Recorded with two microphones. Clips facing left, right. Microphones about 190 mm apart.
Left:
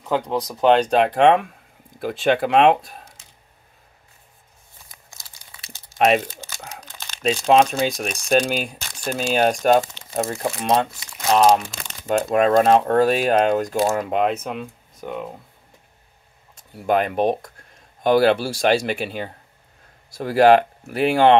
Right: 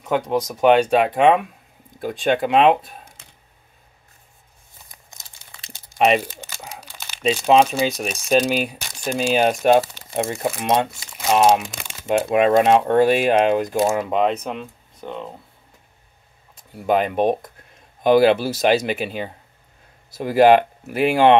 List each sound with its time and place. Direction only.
0.3 s speech: 10° right (ahead or behind)
5.1 s crumpling: 20° right (ahead or behind)
5.9 s speech: 5° right (ahead or behind)
16.7 s speech: centre (ahead or behind)
20.3 s speech: 5° right (ahead or behind)